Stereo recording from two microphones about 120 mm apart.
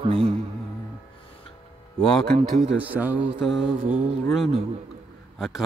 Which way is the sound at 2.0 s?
5° left (ahead or behind).